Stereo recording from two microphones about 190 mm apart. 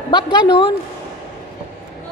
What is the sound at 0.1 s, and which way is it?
Speech, 25° left (ahead or behind).